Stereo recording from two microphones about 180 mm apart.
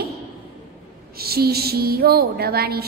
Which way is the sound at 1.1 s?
60° right (ahead or behind).